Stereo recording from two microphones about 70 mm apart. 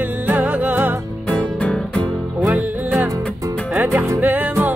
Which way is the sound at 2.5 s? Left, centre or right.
Right.